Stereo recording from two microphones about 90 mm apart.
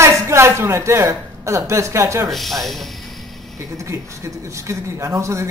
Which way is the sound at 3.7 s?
35° right (ahead or behind).